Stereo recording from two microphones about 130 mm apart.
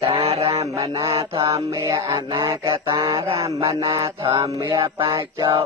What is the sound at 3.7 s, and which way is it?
Music, 25° right (ahead or behind).